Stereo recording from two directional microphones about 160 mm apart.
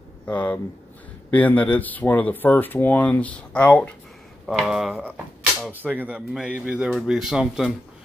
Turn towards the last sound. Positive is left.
turn(degrees=-5)  # may be behind; listen again after turning